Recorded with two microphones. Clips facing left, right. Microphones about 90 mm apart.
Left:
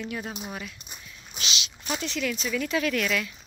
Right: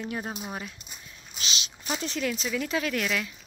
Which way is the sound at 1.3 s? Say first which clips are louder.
Left 2 dB; 40° right (ahead or behind).